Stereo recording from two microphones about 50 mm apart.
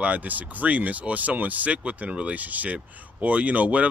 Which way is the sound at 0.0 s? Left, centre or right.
Right.